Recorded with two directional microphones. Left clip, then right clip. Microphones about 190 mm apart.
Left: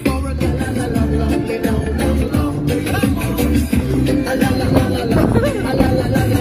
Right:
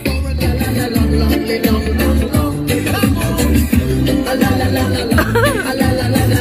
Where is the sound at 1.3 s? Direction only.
30° right (ahead or behind).